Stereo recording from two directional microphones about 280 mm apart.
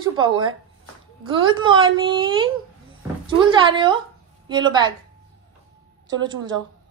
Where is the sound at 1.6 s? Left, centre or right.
Centre.